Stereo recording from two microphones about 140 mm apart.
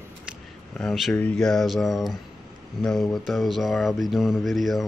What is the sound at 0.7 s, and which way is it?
Speech, centre (ahead or behind).